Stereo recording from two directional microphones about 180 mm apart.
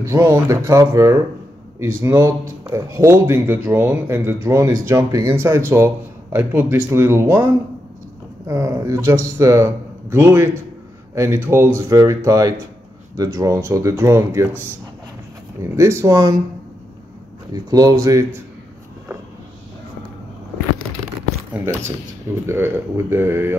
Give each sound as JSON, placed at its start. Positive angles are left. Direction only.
{"t": 0.0, "sound": "speech", "side_deg": -15}
{"t": 15.6, "sound": "speech", "side_deg": -15}
{"t": 17.5, "sound": "speech", "side_deg": -20}
{"t": 21.5, "sound": "speech", "side_deg": -15}